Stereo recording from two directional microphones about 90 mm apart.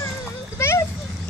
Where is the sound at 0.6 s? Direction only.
30° left (ahead or behind).